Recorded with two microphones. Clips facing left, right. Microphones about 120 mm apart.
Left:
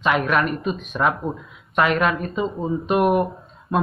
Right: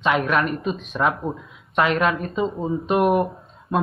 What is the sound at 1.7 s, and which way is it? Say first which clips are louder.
Speech: even; 25° right (ahead or behind).